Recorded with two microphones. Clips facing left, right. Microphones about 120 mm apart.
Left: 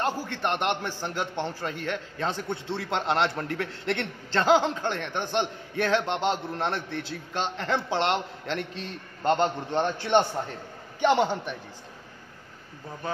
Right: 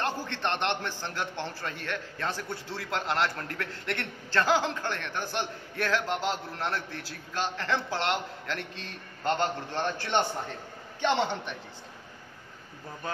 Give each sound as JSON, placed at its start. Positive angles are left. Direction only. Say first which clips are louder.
{"t": 0.0, "sound": "a man's voice", "louder": "left 3 dB", "side_deg": 10}